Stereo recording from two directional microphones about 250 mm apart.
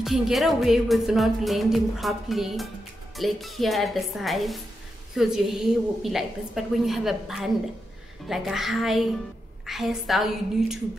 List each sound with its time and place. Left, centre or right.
0.0 s music: centre